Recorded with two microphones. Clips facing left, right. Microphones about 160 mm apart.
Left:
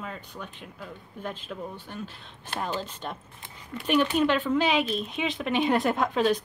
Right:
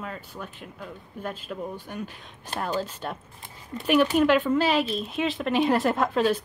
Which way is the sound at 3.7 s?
30° right (ahead or behind).